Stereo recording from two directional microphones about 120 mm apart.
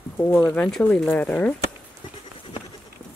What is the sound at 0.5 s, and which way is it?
Speech, 5° left (ahead or behind).